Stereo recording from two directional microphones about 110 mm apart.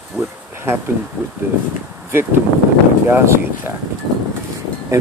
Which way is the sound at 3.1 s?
25° right (ahead or behind).